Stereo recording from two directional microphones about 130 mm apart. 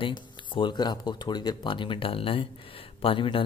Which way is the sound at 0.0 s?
40° left (ahead or behind).